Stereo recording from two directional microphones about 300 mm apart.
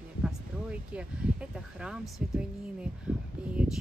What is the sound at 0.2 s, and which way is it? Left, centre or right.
Speech, centre.